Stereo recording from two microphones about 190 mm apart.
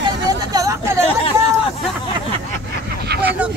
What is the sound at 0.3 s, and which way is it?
Vehicle, 20° right (ahead or behind).